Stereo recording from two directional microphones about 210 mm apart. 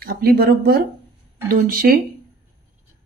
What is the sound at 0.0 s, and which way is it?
Speech, 45° right (ahead or behind).